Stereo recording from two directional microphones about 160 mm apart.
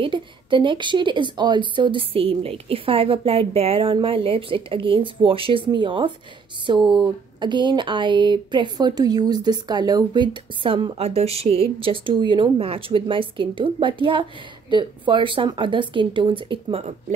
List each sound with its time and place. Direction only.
0.0 s speech: 30° right (ahead or behind)